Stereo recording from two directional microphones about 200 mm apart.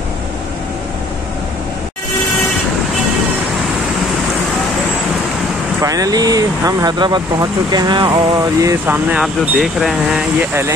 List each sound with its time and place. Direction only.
5.8 s speech: 15° right (ahead or behind)